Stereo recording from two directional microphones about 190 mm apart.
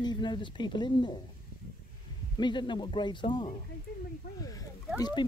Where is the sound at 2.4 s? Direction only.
25° left (ahead or behind).